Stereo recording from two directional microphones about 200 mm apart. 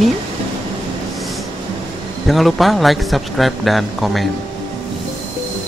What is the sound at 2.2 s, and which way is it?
A man's voice, centre (ahead or behind).